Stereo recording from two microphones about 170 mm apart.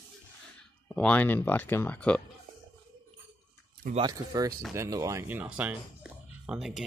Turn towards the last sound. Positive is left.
turn(degrees=-5)  # may be behind; listen again after turning